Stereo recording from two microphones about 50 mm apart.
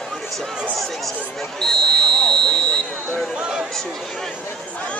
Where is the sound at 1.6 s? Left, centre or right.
Centre.